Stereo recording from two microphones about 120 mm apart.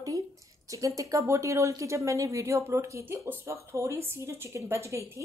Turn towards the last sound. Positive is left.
turn(degrees=-25)  # may be behind; listen again after turning